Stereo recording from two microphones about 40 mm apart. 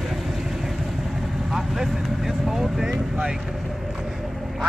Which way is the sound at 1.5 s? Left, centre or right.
Centre.